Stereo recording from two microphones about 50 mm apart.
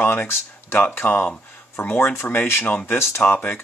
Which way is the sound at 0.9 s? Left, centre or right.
Left.